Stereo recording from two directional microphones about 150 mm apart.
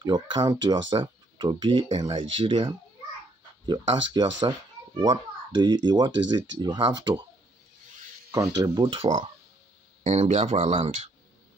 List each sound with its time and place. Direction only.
0.0 s speech: 30° right (ahead or behind)
8.3 s speech: 20° right (ahead or behind)
8.9 s speech: 40° right (ahead or behind)
10.0 s speech: 50° right (ahead or behind)